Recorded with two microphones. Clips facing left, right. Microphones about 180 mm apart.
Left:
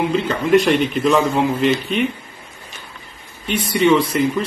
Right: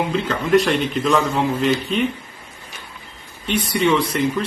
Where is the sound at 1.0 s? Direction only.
15° left (ahead or behind).